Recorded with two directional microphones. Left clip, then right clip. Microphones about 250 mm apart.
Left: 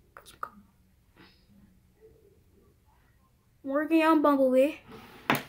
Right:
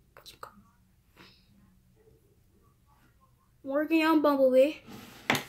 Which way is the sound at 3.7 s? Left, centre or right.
Centre.